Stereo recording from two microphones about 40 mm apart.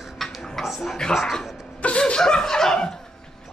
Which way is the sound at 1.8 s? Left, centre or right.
Left.